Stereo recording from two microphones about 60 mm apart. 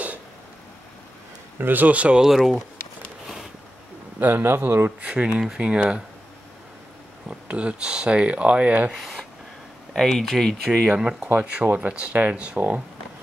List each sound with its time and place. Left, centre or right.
1.6 s speech: right
2.2 s speech: centre
4.2 s speech: right
5.0 s speech: centre
7.2 s speech: centre
8.9 s speech: centre
10.9 s speech: centre
11.5 s speech: right